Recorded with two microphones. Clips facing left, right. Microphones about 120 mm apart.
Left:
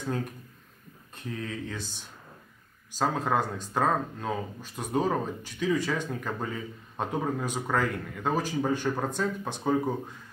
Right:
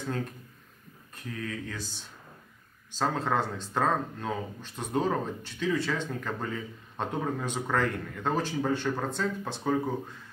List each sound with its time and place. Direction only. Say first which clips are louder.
1.1 s speech: left 1 dB; 20° left (ahead or behind)
2.9 s speech: left 1 dB; 10° left (ahead or behind)